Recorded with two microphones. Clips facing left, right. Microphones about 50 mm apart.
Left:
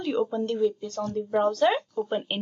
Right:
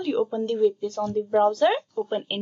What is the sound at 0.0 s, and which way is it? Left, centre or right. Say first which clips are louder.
Speech: right 2 dB; centre.